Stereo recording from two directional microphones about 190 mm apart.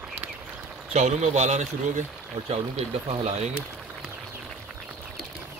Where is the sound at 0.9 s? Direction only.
35° right (ahead or behind).